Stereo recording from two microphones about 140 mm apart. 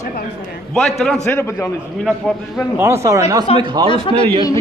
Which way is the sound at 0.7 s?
5° left (ahead or behind).